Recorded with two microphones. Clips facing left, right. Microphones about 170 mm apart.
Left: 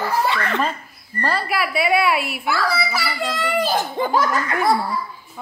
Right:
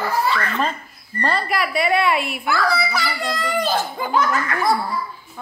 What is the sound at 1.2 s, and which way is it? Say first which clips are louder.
A child's voice: even; 5° left (ahead or behind).